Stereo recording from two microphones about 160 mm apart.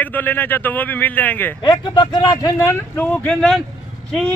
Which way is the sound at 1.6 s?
25° left (ahead or behind).